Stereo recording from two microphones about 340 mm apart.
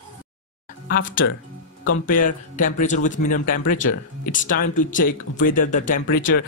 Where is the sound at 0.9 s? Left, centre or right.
Left.